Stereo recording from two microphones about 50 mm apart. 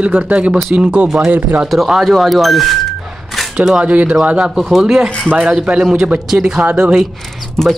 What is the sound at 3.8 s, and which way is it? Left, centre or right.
Speech, right.